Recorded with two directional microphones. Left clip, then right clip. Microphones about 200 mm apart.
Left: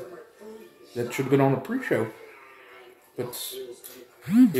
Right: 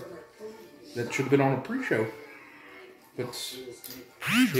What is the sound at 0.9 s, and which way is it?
Speech, 35° left (ahead or behind).